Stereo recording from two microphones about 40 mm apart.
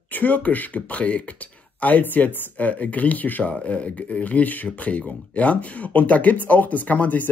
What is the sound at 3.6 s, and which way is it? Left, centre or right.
Speech, left.